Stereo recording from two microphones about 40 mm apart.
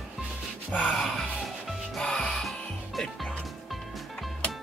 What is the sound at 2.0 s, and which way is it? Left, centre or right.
Music, centre.